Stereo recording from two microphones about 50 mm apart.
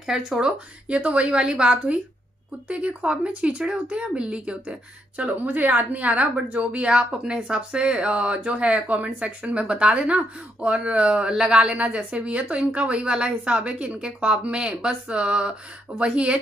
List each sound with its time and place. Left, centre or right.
0.0 s speech: centre